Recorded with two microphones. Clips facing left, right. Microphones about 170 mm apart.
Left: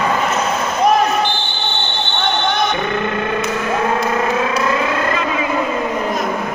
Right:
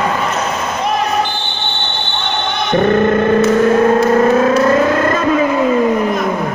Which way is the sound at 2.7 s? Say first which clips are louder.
Right 8 dB; 45° right (ahead or behind).